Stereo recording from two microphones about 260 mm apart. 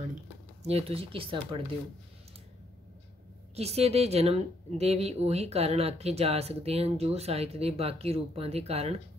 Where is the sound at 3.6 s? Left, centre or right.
Right.